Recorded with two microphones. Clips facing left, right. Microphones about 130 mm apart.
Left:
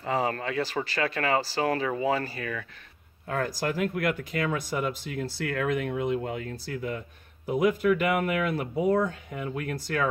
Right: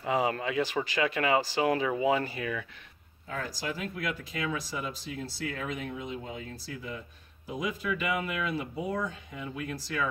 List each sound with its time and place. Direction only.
0.0 s speech: 15° right (ahead or behind)
3.3 s speech: 60° left (ahead or behind)